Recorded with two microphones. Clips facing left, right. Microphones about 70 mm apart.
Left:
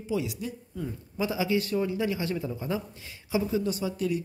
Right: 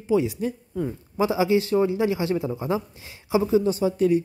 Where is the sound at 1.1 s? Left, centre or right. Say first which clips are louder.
Right 7 dB; right.